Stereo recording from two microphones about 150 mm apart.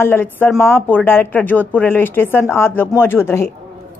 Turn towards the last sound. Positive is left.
turn(degrees=15)  # may be behind; listen again after turning